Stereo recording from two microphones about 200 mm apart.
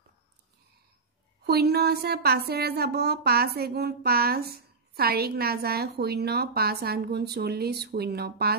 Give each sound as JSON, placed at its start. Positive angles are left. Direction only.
{"t": 1.4, "sound": "speech", "side_deg": -55}